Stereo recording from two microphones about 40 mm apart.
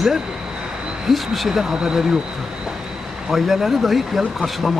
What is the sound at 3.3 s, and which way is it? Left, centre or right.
Speech, centre.